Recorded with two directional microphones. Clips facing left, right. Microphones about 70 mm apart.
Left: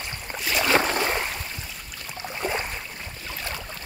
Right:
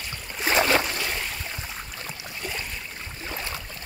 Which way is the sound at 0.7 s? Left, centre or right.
Left.